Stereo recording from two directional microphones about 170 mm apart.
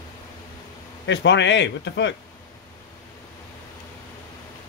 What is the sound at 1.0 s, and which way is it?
A man's voice, 90° left.